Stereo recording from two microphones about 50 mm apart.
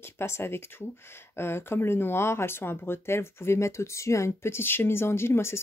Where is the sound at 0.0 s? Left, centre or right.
Left.